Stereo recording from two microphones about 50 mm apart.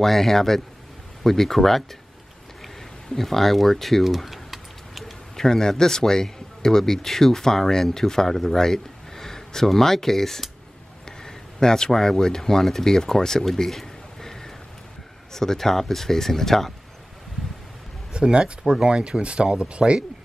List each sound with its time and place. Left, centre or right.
0.0 s a man's voice: centre
3.2 s typing: centre
5.3 s a man's voice: centre
18.1 s speech: centre